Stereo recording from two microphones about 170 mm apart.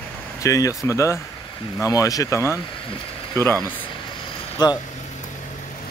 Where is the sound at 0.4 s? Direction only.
20° left (ahead or behind).